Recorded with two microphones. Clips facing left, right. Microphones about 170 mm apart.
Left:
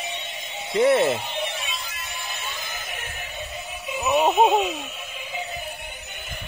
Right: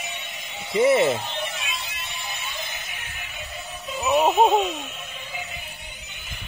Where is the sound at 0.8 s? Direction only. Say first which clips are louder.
Even; centre (ahead or behind).